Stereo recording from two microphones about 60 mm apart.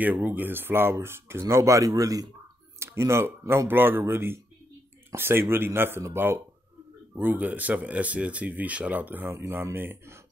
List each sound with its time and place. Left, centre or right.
0.0 s a man's voice: right
1.5 s speech: right
2.8 s a man's voice: right
9.3 s speech: right